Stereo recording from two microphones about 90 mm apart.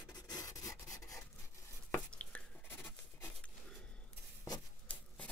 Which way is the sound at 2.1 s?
15° left (ahead or behind).